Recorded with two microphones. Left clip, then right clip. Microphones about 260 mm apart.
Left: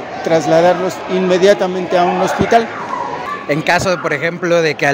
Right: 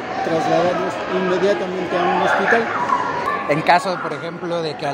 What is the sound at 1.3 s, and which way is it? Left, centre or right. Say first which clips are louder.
Speech: left 9 dB; left.